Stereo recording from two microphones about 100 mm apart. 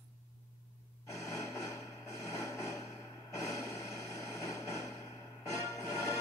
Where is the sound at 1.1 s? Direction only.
30° left (ahead or behind).